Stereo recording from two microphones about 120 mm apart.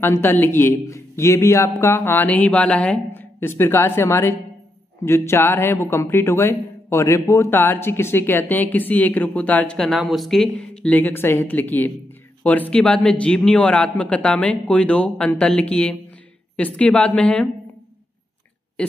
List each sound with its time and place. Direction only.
0.0 s a man's voice: 20° left (ahead or behind)
18.8 s a man's voice: 10° left (ahead or behind)